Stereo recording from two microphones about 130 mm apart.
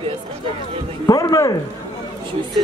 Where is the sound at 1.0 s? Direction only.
25° left (ahead or behind).